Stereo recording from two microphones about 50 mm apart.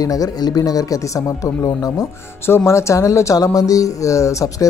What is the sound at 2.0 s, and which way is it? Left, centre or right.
Speech, left.